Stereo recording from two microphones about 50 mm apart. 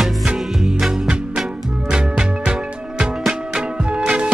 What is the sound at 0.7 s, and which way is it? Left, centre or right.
Music, centre.